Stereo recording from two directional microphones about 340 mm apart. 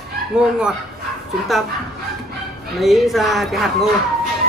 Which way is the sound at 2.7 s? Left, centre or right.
Centre.